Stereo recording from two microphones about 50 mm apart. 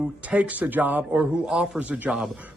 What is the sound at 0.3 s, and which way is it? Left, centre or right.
Speech, right.